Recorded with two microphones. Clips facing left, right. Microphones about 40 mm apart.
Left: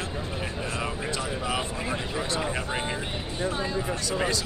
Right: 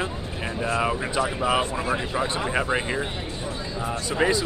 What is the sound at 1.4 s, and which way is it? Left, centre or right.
Speech, centre.